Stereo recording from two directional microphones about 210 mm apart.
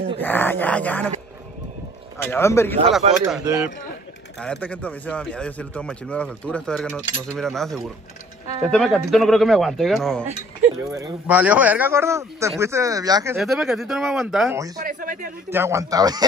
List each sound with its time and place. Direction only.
0.2 s a sound: 10° left (ahead or behind)
2.1 s a man's voice: 10° left (ahead or behind)
3.0 s speech: 30° right (ahead or behind)
3.4 s a man's voice: 15° right (ahead or behind)
4.4 s speech: 5° left (ahead or behind)
10.9 s a man's voice: 15° right (ahead or behind)
13.4 s speech: centre (ahead or behind)
14.8 s speech: 40° right (ahead or behind)
15.5 s a man's voice: 10° right (ahead or behind)